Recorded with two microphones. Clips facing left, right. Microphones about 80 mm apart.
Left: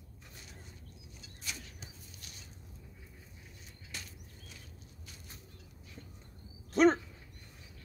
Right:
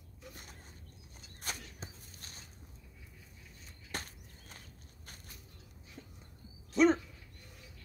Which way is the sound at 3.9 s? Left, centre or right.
Right.